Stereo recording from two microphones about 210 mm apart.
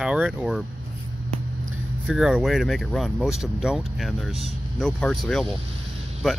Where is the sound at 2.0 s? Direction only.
5° right (ahead or behind).